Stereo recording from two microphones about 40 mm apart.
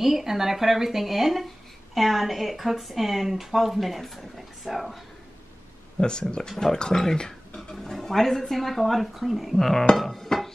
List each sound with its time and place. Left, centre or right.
0.0 s speech: centre
5.9 s speech: left
6.4 s music: centre
7.2 s a sound: centre
7.7 s speech: centre
9.6 s music: centre